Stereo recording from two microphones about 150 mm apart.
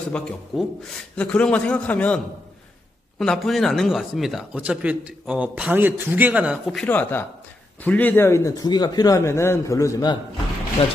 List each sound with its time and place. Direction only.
0.1 s a man's voice: 5° left (ahead or behind)
3.2 s speech: centre (ahead or behind)
6.9 s a man's voice: 15° left (ahead or behind)
10.8 s speech: 40° left (ahead or behind)